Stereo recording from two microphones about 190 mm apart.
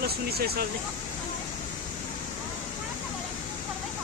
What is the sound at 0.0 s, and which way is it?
Speech, 55° right (ahead or behind).